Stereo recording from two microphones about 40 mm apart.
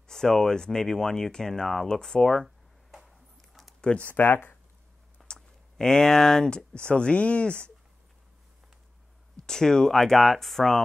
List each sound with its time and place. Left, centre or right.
0.1 s speech: centre
2.4 s a sound: centre
4.0 s speech: left
5.3 s speech: centre
9.5 s speech: centre